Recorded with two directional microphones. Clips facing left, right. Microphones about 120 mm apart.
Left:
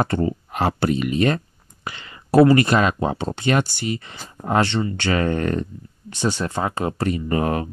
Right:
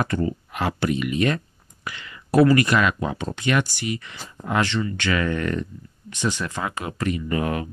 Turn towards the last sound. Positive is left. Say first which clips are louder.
# left 3 dB
turn(degrees=35)  # may be behind; listen again after turning